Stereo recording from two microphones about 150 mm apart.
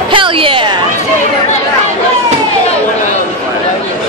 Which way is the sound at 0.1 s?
35° right (ahead or behind).